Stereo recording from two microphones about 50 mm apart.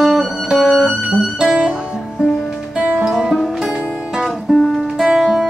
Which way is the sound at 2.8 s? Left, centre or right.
Centre.